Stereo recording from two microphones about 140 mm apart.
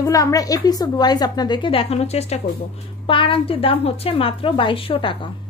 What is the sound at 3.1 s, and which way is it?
A woman's voice, 40° left (ahead or behind).